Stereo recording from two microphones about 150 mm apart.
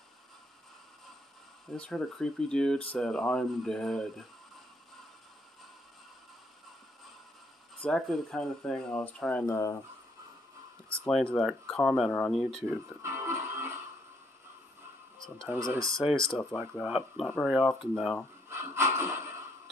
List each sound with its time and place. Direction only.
1.7 s speech: 5° left (ahead or behind)
7.8 s speech: 5° left (ahead or behind)
10.9 s speech: 5° left (ahead or behind)
13.0 s music: 20° right (ahead or behind)
15.1 s tick-tock: 5° left (ahead or behind)
15.7 s speech: 20° right (ahead or behind)
16.0 s speech: centre (ahead or behind)
16.5 s speech: 5° right (ahead or behind)
18.5 s a sound: 15° right (ahead or behind)